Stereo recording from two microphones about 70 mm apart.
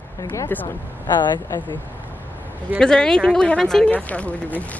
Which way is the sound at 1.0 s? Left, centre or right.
Left.